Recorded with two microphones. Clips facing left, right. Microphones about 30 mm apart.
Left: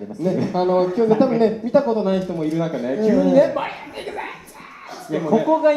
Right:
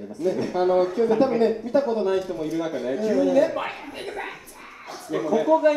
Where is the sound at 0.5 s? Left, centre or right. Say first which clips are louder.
Left 2 dB; left.